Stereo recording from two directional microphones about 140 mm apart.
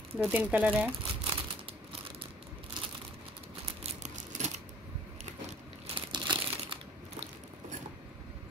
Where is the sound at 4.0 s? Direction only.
55° right (ahead or behind).